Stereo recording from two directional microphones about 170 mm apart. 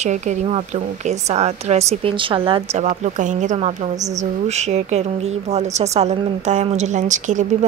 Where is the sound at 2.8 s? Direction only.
45° right (ahead or behind).